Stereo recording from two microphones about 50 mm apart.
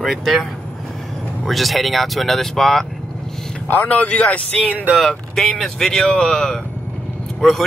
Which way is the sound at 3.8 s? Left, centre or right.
Left.